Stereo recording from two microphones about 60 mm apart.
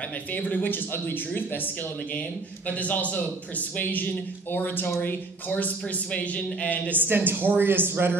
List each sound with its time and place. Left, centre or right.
0.3 s speech: left
2.7 s a man's voice: left
5.5 s a man's voice: left
6.9 s speech: right